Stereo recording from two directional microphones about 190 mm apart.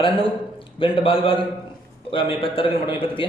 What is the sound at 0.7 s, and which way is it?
A man's voice, 25° left (ahead or behind).